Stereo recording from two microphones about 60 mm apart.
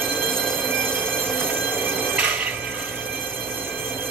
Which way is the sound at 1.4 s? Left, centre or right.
Right.